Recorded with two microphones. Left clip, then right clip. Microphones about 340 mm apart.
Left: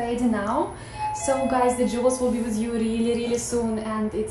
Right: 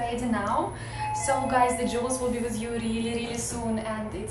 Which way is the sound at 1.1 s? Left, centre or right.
Left.